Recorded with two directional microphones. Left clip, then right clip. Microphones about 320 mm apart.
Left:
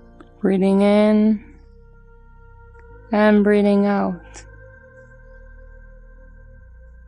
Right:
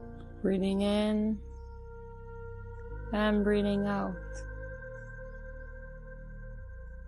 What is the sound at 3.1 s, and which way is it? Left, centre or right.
Speech, left.